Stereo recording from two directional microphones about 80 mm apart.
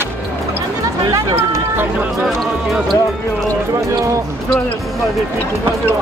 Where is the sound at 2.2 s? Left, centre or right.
Centre.